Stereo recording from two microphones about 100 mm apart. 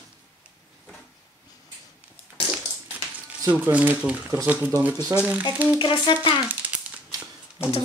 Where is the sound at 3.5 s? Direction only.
15° right (ahead or behind).